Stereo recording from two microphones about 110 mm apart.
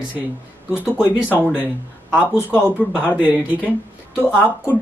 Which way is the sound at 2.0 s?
10° right (ahead or behind).